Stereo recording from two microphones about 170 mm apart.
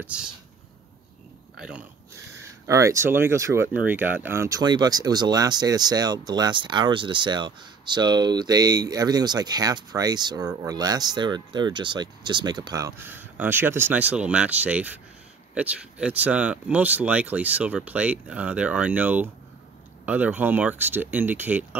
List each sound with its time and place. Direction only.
0.0 s speech: 5° right (ahead or behind)
1.6 s speech: 5° right (ahead or behind)
2.6 s speech: 20° right (ahead or behind)